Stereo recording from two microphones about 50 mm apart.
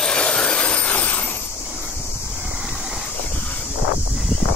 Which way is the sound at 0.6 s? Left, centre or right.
Left.